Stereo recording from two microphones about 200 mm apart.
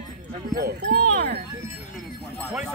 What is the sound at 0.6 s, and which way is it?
Speech, 50° right (ahead or behind).